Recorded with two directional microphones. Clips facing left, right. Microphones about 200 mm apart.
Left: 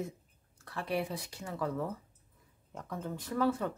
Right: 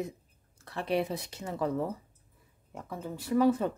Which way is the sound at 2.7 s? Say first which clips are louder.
Right 1 dB; 5° right (ahead or behind).